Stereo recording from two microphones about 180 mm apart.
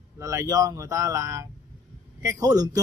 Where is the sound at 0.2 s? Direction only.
15° right (ahead or behind).